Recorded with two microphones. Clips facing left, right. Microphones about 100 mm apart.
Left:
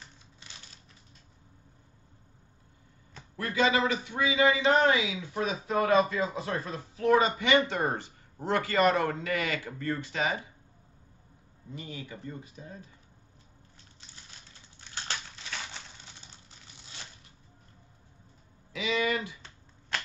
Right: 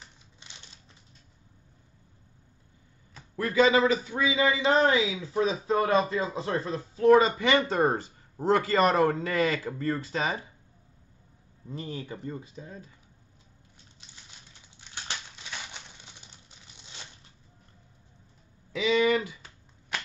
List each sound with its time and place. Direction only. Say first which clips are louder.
3.3 s a man's voice: right 4 dB; 30° right (ahead or behind)
11.7 s a man's voice: right 5 dB; 40° right (ahead or behind)
15.0 s a sound: left 1 dB; 15° right (ahead or behind)
18.9 s a man's voice: right 6 dB; 30° right (ahead or behind)